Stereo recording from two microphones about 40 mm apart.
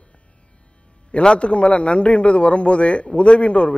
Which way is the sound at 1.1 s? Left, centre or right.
Left.